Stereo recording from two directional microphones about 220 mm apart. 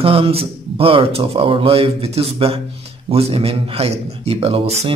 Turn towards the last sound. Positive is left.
turn(degrees=-25)  # may be behind; listen again after turning